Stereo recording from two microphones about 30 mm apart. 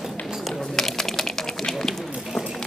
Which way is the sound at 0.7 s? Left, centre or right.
Centre.